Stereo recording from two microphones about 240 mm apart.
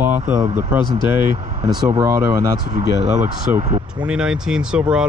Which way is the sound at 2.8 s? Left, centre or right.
Right.